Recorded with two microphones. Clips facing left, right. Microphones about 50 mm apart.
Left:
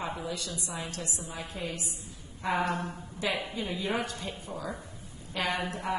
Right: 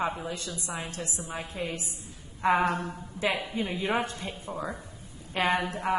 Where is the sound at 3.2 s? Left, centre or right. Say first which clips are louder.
Right 3 dB; centre.